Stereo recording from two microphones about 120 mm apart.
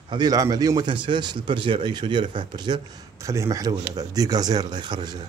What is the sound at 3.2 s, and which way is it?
Speech, 25° right (ahead or behind).